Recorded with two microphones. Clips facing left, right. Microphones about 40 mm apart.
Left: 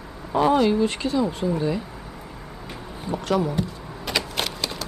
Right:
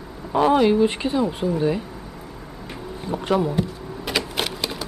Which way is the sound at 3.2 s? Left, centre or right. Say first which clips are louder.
Right 2 dB; centre.